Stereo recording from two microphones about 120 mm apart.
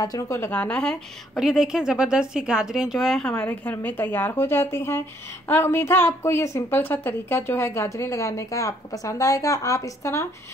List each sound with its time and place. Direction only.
0.0 s a woman's voice: 30° left (ahead or behind)
0.5 s a woman's voice: 10° left (ahead or behind)